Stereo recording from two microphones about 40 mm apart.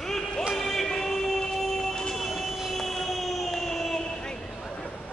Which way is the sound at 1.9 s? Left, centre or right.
Centre.